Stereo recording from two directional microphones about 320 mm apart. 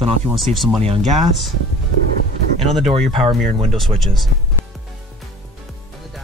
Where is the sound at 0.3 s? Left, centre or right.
Centre.